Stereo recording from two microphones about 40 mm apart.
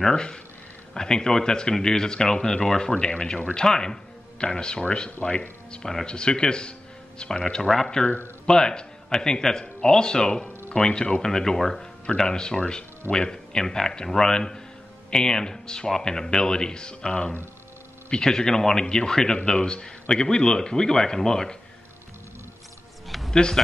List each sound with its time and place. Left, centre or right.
0.0 s a man's voice: centre
2.9 s speech: left
7.6 s speech: centre
8.5 s a man's voice: centre
23.0 s a sound: centre
23.3 s speech: centre